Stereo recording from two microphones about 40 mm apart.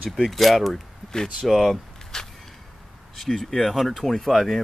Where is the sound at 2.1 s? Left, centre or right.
Centre.